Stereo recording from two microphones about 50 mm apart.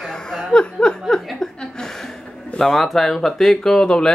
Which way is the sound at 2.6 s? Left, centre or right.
Centre.